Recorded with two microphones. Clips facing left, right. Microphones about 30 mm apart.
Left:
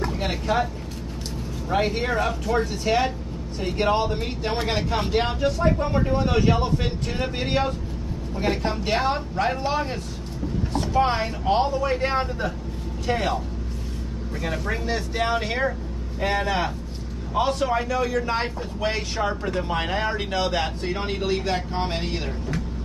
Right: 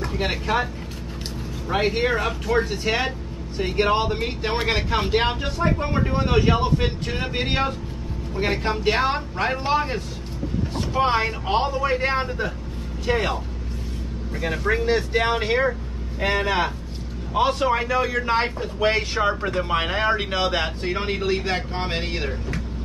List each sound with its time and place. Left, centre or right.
0.2 s a man's voice: centre
1.7 s a man's voice: centre
14.4 s a man's voice: centre